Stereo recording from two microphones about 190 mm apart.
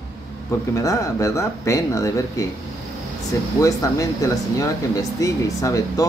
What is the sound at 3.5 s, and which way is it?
Speech, 15° left (ahead or behind).